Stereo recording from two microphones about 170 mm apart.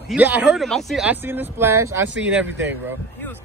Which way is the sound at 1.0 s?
10° right (ahead or behind).